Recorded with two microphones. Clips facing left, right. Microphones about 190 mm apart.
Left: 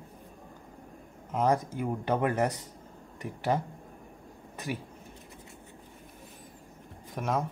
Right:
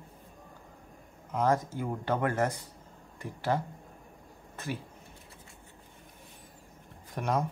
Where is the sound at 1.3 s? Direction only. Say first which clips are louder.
Left 1 dB; 20° left (ahead or behind).